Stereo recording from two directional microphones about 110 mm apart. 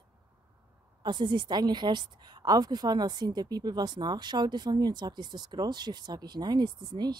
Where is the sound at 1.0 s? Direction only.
45° right (ahead or behind).